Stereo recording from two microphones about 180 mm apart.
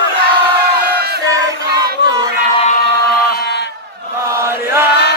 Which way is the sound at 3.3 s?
65° left (ahead or behind).